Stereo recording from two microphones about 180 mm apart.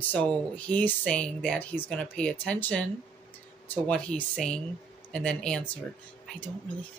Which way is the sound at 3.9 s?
5° left (ahead or behind).